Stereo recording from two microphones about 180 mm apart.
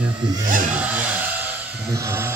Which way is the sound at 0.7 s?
10° right (ahead or behind).